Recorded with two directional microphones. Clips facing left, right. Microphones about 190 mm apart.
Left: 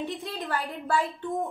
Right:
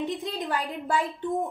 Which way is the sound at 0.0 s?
15° right (ahead or behind).